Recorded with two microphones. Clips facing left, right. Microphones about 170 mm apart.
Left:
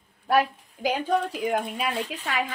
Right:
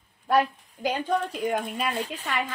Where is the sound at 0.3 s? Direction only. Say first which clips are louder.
Even; 5° left (ahead or behind).